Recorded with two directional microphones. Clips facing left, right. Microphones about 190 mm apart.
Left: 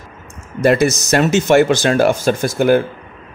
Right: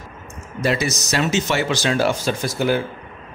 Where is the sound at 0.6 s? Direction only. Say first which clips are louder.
Left 8 dB; 50° left (ahead or behind).